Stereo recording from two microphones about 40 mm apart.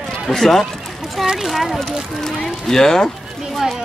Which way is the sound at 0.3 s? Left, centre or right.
Centre.